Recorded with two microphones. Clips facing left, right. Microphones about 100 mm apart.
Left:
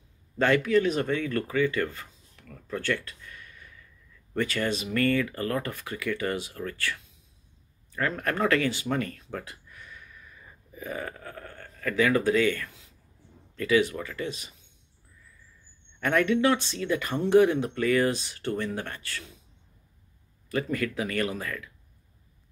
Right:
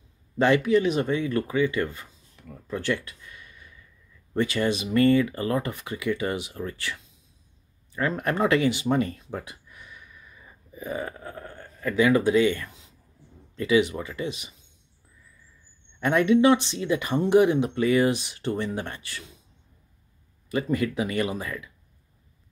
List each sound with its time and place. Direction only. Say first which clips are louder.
0.4 s speech: right 2 dB; 20° right (ahead or behind)
2.4 s a sound: right 2 dB; 20° right (ahead or behind)
4.3 s speech: right 4 dB; 20° right (ahead or behind)
16.0 s speech: right 4 dB; 20° right (ahead or behind)
20.6 s speech: right 4 dB; 20° right (ahead or behind)